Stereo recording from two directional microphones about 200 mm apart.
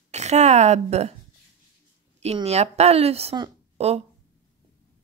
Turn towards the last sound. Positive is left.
turn(degrees=-30)  # may be behind; listen again after turning